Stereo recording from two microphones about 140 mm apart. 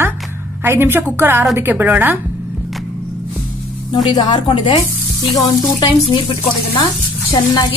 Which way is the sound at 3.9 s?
30° left (ahead or behind).